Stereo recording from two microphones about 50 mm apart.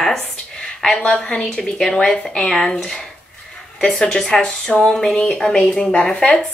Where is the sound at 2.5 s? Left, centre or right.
Centre; by 6.4 s left.